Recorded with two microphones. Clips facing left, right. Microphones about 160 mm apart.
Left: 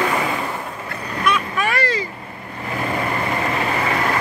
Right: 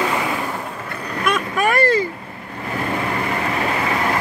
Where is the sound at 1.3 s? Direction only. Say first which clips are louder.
Right 2 dB; 45° right (ahead or behind).